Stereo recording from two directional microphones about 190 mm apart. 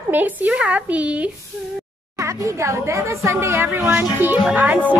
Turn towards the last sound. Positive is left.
turn(degrees=-10)  # may be behind; listen again after turning